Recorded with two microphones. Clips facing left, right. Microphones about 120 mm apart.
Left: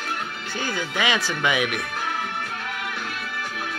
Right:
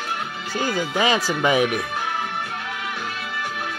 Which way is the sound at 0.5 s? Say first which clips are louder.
Right 5 dB; 35° right (ahead or behind).